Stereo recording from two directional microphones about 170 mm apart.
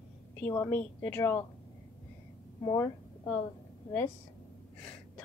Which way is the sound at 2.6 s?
20° left (ahead or behind).